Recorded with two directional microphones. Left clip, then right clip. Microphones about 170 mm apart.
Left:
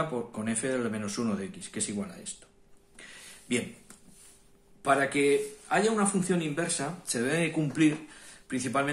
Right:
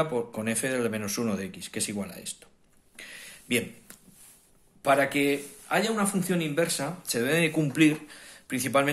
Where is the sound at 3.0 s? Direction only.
30° right (ahead or behind).